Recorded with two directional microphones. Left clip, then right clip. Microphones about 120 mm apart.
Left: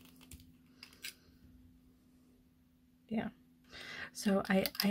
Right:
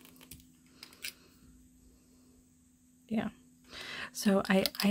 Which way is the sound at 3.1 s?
30° right (ahead or behind).